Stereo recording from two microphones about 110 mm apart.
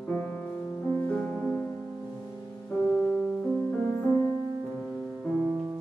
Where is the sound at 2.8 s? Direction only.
10° left (ahead or behind).